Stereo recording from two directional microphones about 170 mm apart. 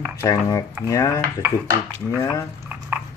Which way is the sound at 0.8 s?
20° left (ahead or behind).